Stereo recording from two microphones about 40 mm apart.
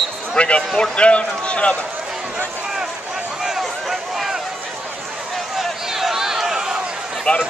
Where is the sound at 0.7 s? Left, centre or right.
Left.